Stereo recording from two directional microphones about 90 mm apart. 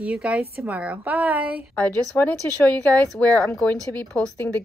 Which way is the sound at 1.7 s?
20° left (ahead or behind).